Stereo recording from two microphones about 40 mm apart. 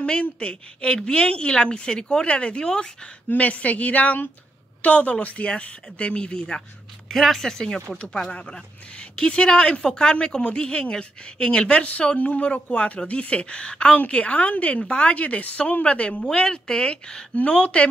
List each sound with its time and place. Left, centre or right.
0.0 s a woman's voice: left
3.3 s a woman's voice: left
7.1 s speech: centre
8.3 s a woman's voice: left
11.8 s a woman's voice: left
16.3 s a woman's voice: centre